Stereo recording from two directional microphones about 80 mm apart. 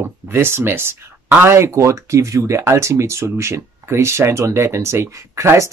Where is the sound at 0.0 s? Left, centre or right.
Right.